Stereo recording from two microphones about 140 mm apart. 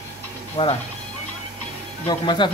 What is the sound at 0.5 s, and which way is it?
Speech, 45° left (ahead or behind).